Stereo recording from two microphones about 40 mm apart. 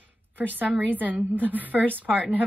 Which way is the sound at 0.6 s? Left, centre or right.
Right.